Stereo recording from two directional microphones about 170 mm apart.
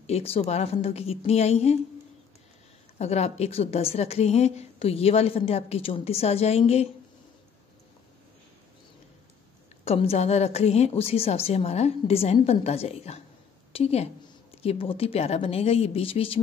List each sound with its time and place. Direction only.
0.0 s a woman's voice: 35° left (ahead or behind)
3.0 s a woman's voice: 40° left (ahead or behind)
9.8 s a woman's voice: 35° left (ahead or behind)